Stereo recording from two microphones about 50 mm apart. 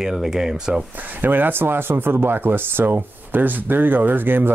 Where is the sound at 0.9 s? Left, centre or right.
Right.